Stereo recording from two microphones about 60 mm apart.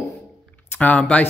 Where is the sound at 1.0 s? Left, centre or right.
Centre.